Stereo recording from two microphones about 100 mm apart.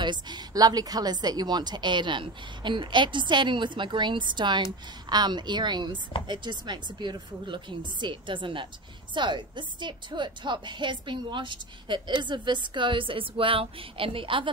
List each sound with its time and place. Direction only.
0.0 s a woman's voice: 50° right (ahead or behind)